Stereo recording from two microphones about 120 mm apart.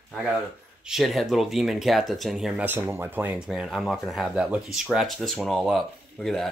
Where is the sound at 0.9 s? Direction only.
Centre (ahead or behind).